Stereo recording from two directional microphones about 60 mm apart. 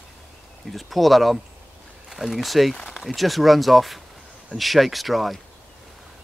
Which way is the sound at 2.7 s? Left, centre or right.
Centre.